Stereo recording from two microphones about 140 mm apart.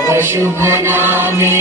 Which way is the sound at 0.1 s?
15° right (ahead or behind).